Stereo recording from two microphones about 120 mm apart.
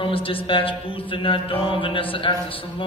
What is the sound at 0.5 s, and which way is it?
Mantra, 50° left (ahead or behind).